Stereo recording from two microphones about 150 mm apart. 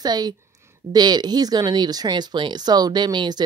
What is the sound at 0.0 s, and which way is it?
A woman's voice, 30° right (ahead or behind).